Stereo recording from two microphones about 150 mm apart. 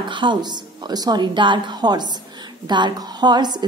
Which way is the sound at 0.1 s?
30° right (ahead or behind).